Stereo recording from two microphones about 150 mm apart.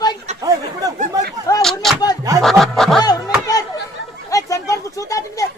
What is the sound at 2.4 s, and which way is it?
Music, centre (ahead or behind).